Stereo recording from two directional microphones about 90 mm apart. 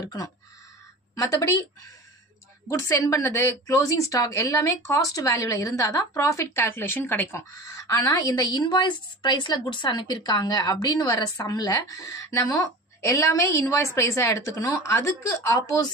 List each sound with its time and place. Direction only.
1.1 s a woman's voice: 35° left (ahead or behind)
2.7 s a woman's voice: 35° left (ahead or behind)
7.3 s a woman's voice: 35° left (ahead or behind)